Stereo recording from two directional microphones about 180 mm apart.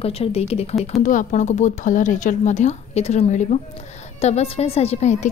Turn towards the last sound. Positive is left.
turn(degrees=40)  # may be behind; listen again after turning